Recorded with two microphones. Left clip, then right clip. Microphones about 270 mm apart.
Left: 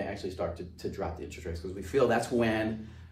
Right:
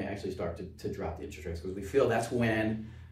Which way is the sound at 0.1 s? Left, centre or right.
Centre.